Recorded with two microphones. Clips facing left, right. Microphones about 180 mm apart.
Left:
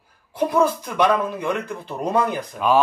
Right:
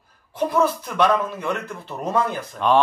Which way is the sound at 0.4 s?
10° left (ahead or behind).